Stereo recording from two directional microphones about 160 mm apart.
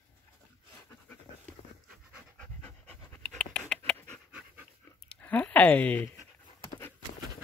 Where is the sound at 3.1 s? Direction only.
10° left (ahead or behind).